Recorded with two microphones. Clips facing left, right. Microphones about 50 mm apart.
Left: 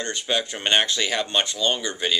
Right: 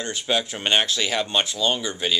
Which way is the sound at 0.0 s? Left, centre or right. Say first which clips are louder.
Right 1 dB; centre.